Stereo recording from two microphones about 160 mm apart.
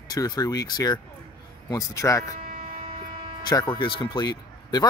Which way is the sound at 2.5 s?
65° right (ahead or behind).